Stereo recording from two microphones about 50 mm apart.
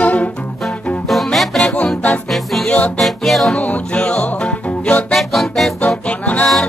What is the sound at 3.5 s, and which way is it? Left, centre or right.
Music, left.